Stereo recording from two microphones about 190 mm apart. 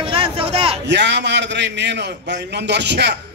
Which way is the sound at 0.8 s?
65° right (ahead or behind).